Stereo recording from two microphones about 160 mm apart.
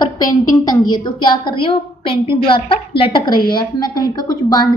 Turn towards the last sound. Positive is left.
turn(degrees=25)  # may be behind; listen again after turning